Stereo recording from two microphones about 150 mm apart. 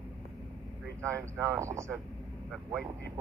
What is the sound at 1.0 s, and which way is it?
Speech, 20° right (ahead or behind).